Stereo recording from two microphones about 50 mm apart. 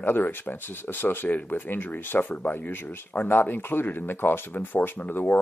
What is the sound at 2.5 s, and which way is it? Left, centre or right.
Speech, left.